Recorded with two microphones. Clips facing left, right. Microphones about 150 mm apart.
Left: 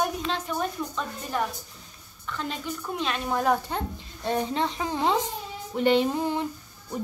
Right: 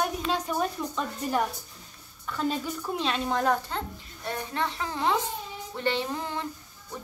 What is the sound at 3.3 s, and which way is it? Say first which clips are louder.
A woman's voice: left 3 dB; 10° left (ahead or behind).